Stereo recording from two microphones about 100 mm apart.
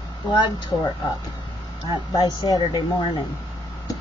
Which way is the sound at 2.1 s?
40° left (ahead or behind).